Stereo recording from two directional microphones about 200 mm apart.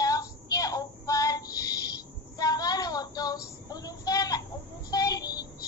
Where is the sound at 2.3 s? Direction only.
20° left (ahead or behind).